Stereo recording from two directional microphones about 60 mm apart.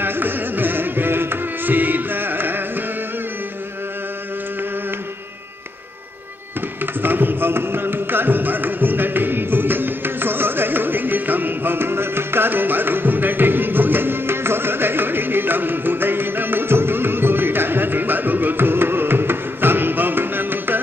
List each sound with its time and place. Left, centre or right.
0.0 s music: right
7.0 s music: right